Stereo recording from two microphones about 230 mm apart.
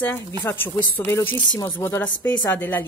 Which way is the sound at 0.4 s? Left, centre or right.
Centre.